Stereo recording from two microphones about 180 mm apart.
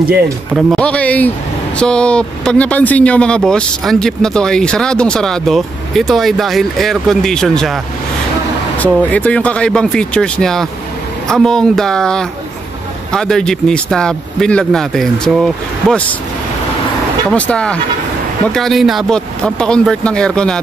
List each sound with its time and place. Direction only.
0.6 s speech: 5° left (ahead or behind)
17.3 s speech: 5° left (ahead or behind)